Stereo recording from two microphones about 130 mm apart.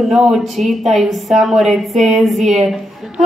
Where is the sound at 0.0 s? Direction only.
Centre (ahead or behind).